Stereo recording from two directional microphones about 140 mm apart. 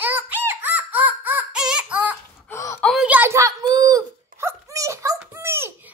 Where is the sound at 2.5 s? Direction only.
20° left (ahead or behind).